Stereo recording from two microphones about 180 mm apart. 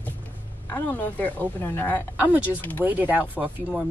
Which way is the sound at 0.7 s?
10° left (ahead or behind).